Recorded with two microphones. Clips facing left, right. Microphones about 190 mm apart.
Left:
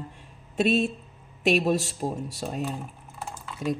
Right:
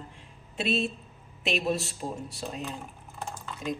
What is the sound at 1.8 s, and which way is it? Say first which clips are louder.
Speech: left 5 dB; 40° left (ahead or behind).